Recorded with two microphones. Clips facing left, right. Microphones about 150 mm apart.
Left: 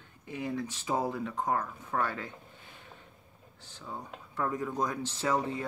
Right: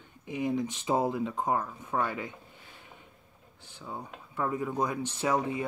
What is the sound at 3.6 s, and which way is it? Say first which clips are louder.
Speech: right 1 dB; 15° right (ahead or behind).